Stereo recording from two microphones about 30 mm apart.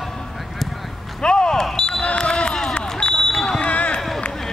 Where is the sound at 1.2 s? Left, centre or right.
Left.